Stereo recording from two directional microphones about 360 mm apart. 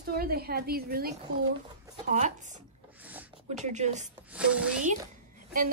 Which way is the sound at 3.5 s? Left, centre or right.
Centre.